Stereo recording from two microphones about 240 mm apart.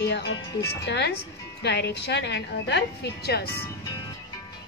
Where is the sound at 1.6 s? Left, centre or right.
Left.